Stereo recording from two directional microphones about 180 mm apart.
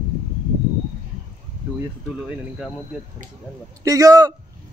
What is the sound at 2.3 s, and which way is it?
Speech, centre (ahead or behind).